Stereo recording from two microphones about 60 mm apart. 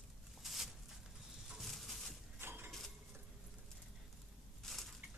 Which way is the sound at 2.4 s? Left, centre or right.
Right.